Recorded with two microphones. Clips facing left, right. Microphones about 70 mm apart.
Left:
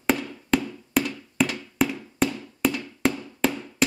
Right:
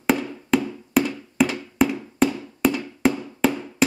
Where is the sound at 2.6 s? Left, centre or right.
Centre.